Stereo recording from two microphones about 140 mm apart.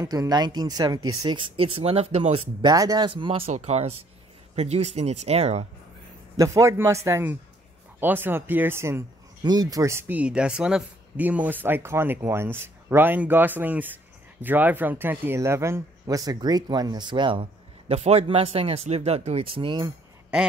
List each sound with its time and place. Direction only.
0.0 s speech: 25° right (ahead or behind); by 2.4 s 45° right (ahead or behind)
2.6 s speech: 25° right (ahead or behind)
3.1 s speech: 40° right (ahead or behind)
3.5 s speech: 50° right (ahead or behind)
6.3 s speech: 20° right (ahead or behind)
9.4 s speech: 30° right (ahead or behind)